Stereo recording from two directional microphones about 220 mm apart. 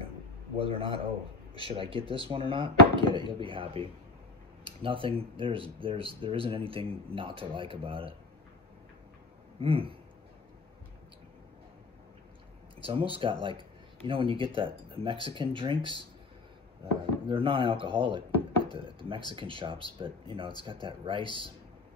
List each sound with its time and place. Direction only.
0.6 s speech: 25° right (ahead or behind)
9.6 s speech: 25° right (ahead or behind)
12.8 s speech: 25° right (ahead or behind)
17.3 s speech: 25° right (ahead or behind)